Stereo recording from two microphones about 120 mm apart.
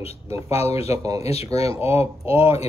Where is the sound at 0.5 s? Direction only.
60° left (ahead or behind).